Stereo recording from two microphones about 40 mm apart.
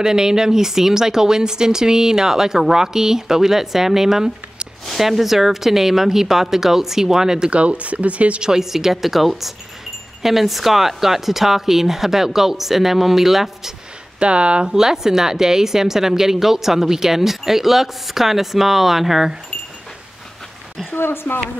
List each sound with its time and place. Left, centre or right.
0.0 s a woman's voice: centre; by 8.4 s right
8.4 s a woman's voice: centre
14.2 s speech: right
14.7 s a woman's voice: centre
20.9 s a woman's voice: left